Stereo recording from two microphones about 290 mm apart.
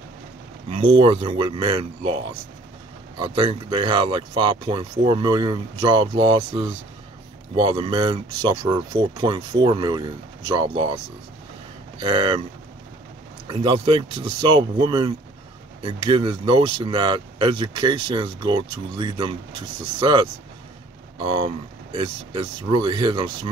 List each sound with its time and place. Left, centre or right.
0.7 s speech: centre
12.0 s speech: centre
13.5 s speech: centre